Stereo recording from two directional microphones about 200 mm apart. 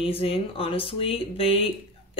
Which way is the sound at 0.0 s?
30° left (ahead or behind).